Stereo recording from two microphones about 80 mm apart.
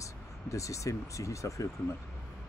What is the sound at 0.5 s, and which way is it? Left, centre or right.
Speech, left.